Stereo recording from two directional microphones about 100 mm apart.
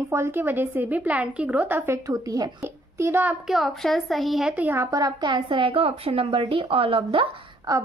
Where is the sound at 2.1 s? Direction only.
40° right (ahead or behind).